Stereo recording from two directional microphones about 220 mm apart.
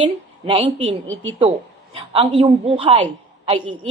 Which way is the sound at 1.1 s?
60° right (ahead or behind).